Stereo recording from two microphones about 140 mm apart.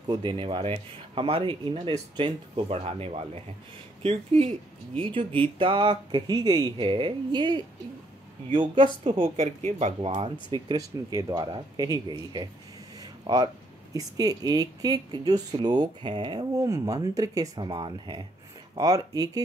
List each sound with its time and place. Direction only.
0.1 s speech: 35° right (ahead or behind)
9.7 s speech: 55° right (ahead or behind)
10.7 s speech: 25° right (ahead or behind)
13.0 s a sound: 30° right (ahead or behind)
13.9 s speech: 25° right (ahead or behind)
16.6 s speech: 25° right (ahead or behind)